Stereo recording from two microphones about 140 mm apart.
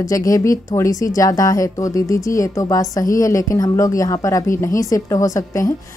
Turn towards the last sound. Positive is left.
turn(degrees=25)  # may be behind; listen again after turning